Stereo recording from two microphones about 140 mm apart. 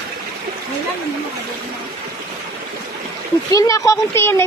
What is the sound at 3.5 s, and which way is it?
Speech, 25° left (ahead or behind).